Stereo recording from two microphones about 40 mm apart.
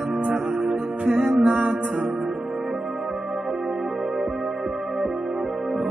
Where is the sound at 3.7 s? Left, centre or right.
Centre.